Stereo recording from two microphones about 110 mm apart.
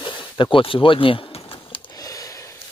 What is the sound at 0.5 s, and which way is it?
Speech, 50° left (ahead or behind).